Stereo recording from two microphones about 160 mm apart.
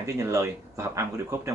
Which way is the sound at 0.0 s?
20° right (ahead or behind).